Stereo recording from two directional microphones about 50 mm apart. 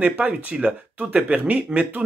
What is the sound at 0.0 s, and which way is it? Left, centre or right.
Speech, right.